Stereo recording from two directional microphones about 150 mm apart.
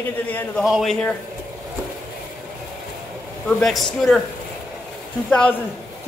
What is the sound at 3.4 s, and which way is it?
Speech, centre (ahead or behind).